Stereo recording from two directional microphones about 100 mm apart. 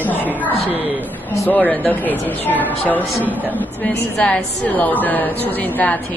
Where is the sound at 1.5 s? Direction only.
15° left (ahead or behind).